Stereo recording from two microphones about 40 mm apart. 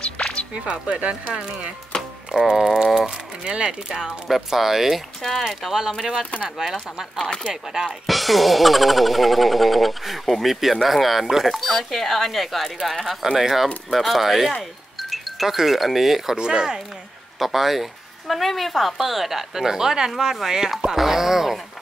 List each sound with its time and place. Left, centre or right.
0.0 s music: left
0.7 s speech: right
2.5 s speech: centre
3.4 s speech: right
3.9 s speech: centre
5.2 s speech: centre
5.7 s speech: centre
7.2 s speech: left
7.7 s speech: centre
16.3 s speech: centre
17.4 s speech: centre